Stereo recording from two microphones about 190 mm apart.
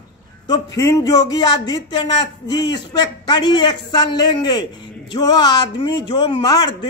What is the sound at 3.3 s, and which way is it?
Speech, 20° left (ahead or behind).